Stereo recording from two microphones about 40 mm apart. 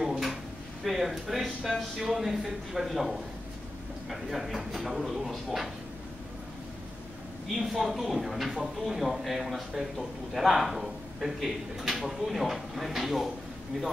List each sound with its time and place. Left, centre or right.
0.8 s a man's voice: centre
7.5 s a man's voice: centre